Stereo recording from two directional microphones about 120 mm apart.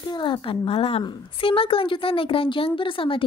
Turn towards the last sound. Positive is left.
turn(degrees=45)  # may be behind; listen again after turning